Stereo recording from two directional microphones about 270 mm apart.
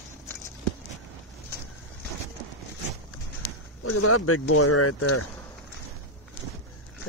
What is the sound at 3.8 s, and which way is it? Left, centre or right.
Speech, left.